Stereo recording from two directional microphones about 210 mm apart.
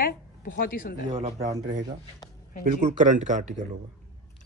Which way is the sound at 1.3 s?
15° right (ahead or behind).